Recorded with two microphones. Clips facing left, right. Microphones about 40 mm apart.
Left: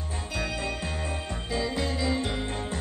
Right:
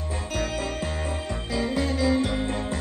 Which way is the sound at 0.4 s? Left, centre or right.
Right.